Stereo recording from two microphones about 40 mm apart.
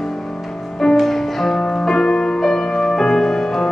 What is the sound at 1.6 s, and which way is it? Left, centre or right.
Music, centre.